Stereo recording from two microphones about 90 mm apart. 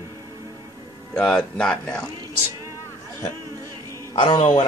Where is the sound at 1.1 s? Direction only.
10° left (ahead or behind).